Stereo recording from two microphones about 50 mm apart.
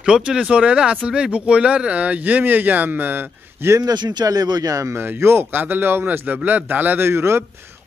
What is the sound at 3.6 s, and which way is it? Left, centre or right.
Speech, right.